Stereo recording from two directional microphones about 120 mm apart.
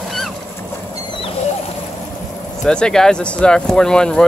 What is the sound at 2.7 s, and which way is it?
Speech, 5° left (ahead or behind).